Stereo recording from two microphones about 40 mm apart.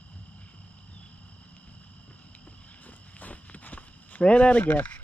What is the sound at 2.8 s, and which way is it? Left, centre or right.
Walk, left.